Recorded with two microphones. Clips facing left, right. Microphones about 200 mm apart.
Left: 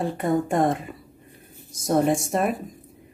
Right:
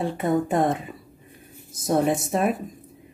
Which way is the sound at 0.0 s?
Centre (ahead or behind).